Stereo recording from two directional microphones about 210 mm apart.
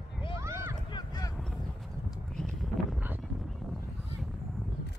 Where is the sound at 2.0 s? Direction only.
Centre (ahead or behind).